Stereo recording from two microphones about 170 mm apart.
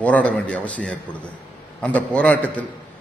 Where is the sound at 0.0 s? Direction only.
10° left (ahead or behind).